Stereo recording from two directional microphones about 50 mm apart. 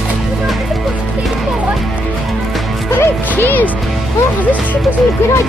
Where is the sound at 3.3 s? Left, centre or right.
Left.